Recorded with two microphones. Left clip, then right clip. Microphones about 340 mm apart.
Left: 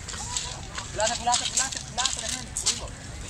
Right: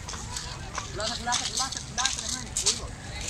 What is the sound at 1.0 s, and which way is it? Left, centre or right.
Clip-clop, centre.